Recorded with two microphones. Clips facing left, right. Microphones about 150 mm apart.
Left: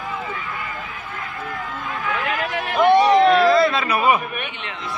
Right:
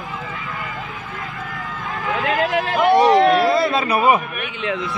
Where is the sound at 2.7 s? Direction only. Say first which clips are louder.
Even; centre (ahead or behind).